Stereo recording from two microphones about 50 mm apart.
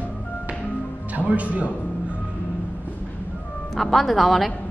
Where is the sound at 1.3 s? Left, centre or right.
Right.